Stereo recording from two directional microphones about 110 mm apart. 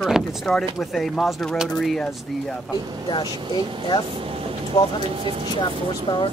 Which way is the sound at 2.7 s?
45° left (ahead or behind).